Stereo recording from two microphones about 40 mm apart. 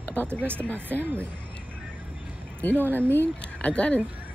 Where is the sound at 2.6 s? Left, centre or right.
Left.